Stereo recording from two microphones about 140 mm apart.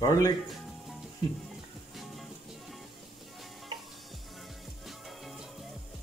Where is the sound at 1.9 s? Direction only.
Centre (ahead or behind).